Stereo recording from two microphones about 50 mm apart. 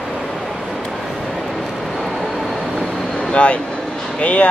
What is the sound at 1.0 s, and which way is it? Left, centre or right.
Vehicle, centre.